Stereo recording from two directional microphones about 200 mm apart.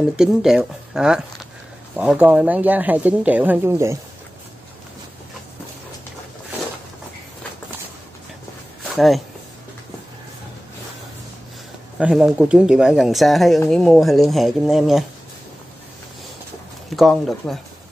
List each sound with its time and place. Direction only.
0.1 s speech: centre (ahead or behind)
8.8 s speech: centre (ahead or behind)
12.0 s speech: 5° right (ahead or behind)
16.9 s speech: centre (ahead or behind)